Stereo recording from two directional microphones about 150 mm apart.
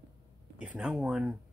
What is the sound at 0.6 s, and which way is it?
Speech, 5° right (ahead or behind).